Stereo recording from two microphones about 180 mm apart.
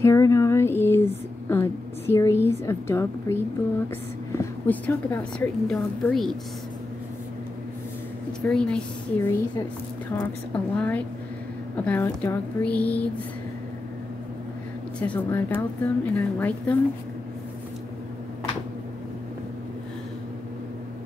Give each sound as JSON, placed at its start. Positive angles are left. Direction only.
{"t": 0.0, "sound": "a sound", "side_deg": 15}
{"t": 1.5, "sound": "a woman's voice", "side_deg": 15}
{"t": 8.3, "sound": "a woman's voice", "side_deg": 5}
{"t": 10.5, "sound": "a woman's voice", "side_deg": 10}
{"t": 15.0, "sound": "a woman's voice", "side_deg": 10}